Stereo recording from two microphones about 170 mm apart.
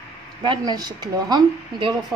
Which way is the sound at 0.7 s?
25° right (ahead or behind).